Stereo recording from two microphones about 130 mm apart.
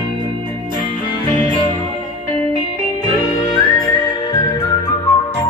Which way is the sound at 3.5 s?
30° left (ahead or behind).